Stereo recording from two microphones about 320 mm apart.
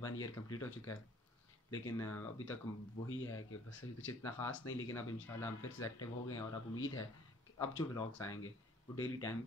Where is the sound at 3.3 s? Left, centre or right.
Left.